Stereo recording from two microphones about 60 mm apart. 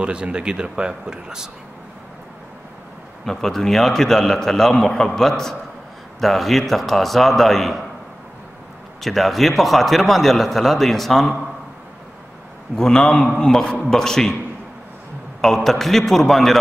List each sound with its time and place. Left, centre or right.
0.0 s speech: centre
3.3 s a man's voice: centre
9.0 s a man's voice: centre
12.7 s a man's voice: centre
15.4 s a man's voice: centre